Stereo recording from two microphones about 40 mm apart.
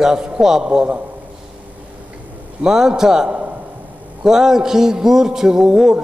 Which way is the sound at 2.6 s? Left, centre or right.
Centre.